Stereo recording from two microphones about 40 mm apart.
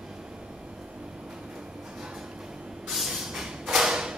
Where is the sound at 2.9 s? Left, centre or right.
Centre.